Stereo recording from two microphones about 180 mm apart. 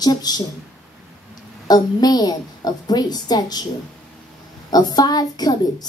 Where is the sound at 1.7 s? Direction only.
20° left (ahead or behind).